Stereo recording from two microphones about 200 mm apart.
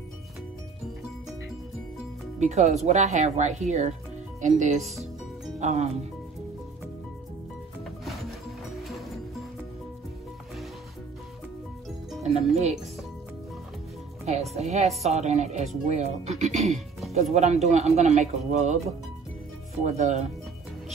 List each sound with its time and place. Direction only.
2.4 s speech: 35° right (ahead or behind)
14.2 s speech: 35° right (ahead or behind)
19.8 s speech: 35° right (ahead or behind)